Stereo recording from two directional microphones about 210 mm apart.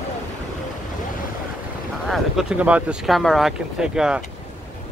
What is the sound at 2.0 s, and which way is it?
Speech, centre (ahead or behind).